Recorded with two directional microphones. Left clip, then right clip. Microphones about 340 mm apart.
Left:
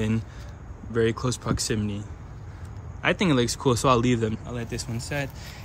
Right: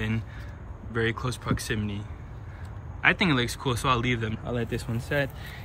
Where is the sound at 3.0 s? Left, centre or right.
Centre.